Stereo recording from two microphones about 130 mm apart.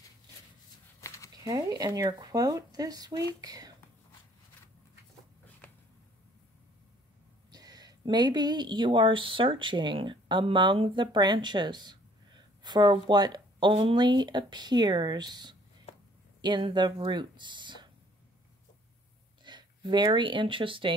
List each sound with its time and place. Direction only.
1.0 s a sound: 25° left (ahead or behind)
1.4 s speech: 30° right (ahead or behind)
7.5 s speech: 30° right (ahead or behind)
19.4 s speech: 35° right (ahead or behind)